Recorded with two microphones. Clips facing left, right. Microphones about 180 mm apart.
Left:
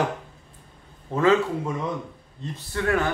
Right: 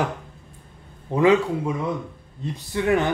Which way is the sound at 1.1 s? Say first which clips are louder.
Right 2 dB; 15° right (ahead or behind).